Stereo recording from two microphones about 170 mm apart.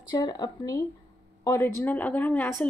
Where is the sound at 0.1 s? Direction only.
25° left (ahead or behind).